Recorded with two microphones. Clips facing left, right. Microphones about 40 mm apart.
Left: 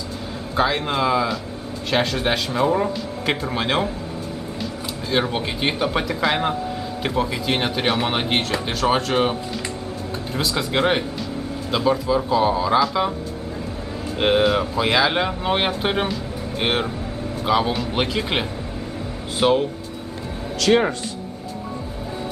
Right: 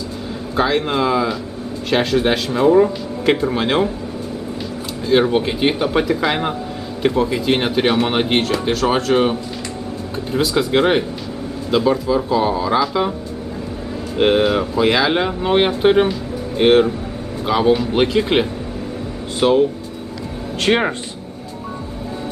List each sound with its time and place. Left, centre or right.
0.6 s speech: centre
5.1 s speech: centre
14.1 s speech: centre
20.6 s speech: right